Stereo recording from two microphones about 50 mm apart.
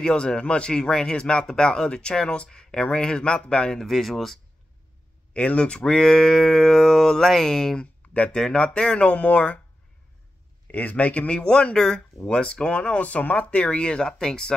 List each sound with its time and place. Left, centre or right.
0.0 s speech: centre
3.8 s speech: centre
5.3 s speech: left
7.8 s a sound: left
8.4 s speech: centre
10.7 s speech: left; by 14.5 s centre